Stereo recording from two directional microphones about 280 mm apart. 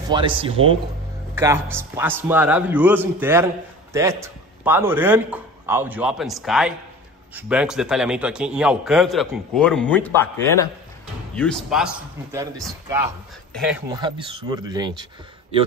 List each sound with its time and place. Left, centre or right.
0.1 s a man's voice: centre
13.5 s speech: centre
13.9 s a man's voice: centre